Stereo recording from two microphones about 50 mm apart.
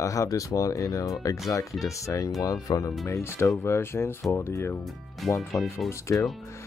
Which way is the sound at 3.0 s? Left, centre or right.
Left.